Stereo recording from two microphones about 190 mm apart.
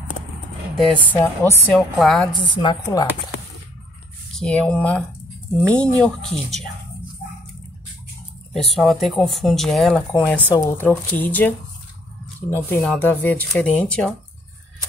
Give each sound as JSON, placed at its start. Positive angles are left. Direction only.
{"t": 0.7, "sound": "speech", "side_deg": 0}
{"t": 2.6, "sound": "speech", "side_deg": 20}
{"t": 4.4, "sound": "speech", "side_deg": 5}
{"t": 8.5, "sound": "speech", "side_deg": 0}